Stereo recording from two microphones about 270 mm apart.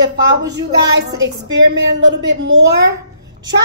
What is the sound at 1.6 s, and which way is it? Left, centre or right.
A woman's voice, right.